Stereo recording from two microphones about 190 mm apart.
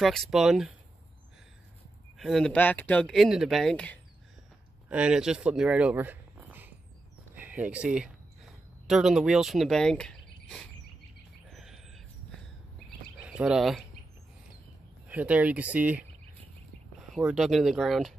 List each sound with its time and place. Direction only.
0.0 s speech: centre (ahead or behind)
2.1 s speech: centre (ahead or behind)
4.8 s speech: 5° right (ahead or behind)
7.3 s a sound: 10° right (ahead or behind)
13.2 s speech: 5° right (ahead or behind)
15.0 s speech: 10° right (ahead or behind)
17.1 s speech: centre (ahead or behind)